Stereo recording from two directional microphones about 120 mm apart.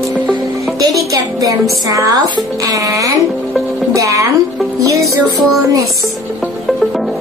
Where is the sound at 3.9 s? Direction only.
30° right (ahead or behind).